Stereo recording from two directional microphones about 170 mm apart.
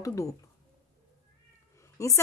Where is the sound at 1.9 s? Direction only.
20° left (ahead or behind).